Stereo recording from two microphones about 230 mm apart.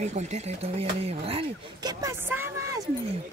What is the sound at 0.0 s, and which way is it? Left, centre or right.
Speech, right.